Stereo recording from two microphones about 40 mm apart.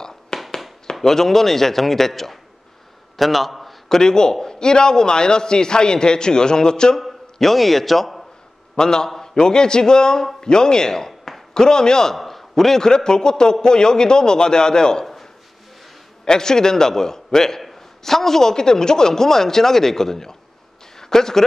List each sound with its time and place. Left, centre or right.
0.3 s fireworks: left
1.0 s a man's voice: centre
3.2 s a sound: centre
4.0 s a man's voice: centre
7.0 s a man's voice: centre
8.7 s a man's voice: centre
12.2 s a man's voice: centre
16.3 s a man's voice: centre